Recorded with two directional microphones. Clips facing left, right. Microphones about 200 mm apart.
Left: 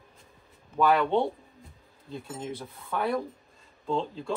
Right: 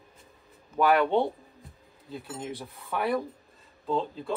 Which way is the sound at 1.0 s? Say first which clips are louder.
Right 1 dB; centre (ahead or behind).